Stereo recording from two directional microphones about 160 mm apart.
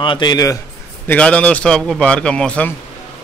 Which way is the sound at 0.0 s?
30° left (ahead or behind).